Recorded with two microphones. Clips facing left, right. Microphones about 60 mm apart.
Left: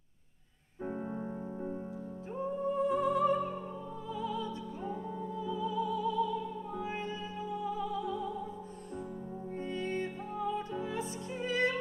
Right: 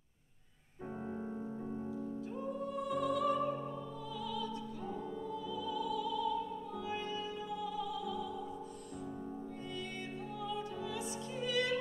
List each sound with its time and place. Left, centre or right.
0.8 s keyboard: left
2.3 s music: left
9.8 s music: left